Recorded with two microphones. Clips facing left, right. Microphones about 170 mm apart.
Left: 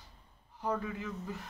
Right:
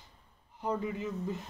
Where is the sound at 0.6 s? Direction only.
20° right (ahead or behind).